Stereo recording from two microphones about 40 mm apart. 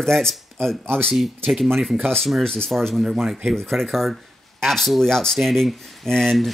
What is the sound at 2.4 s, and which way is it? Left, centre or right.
Speech, centre.